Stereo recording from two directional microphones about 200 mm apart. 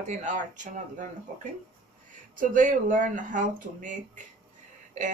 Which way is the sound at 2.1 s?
40° right (ahead or behind).